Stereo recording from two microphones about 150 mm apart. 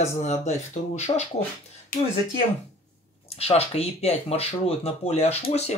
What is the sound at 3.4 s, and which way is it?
Speech, 45° left (ahead or behind).